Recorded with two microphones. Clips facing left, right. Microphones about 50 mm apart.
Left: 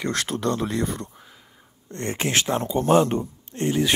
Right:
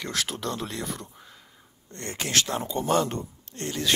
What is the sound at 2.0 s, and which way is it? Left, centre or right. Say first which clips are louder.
Speech: left 4 dB; left.